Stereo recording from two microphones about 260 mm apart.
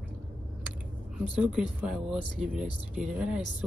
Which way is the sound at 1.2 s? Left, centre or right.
Centre.